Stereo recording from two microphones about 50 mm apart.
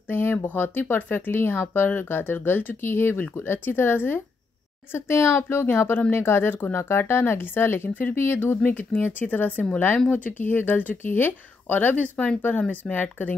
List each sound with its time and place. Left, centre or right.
0.1 s speech: left
8.6 s speech: left